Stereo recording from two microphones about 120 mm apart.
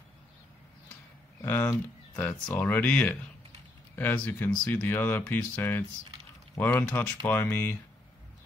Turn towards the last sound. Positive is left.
turn(degrees=15)  # may be behind; listen again after turning